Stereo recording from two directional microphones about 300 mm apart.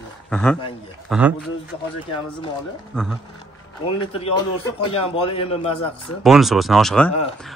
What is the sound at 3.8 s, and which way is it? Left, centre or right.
A man's voice, centre.